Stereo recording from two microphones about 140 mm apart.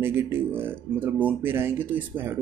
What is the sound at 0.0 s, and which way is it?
Speech, 15° right (ahead or behind).